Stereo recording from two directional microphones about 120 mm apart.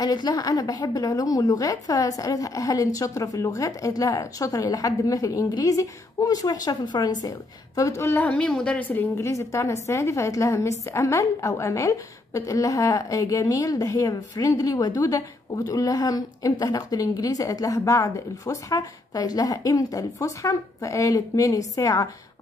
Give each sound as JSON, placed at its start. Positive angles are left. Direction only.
{"t": 0.0, "sound": "speech", "side_deg": 35}